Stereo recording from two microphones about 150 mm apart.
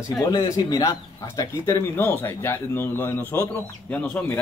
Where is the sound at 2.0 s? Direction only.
15° left (ahead or behind).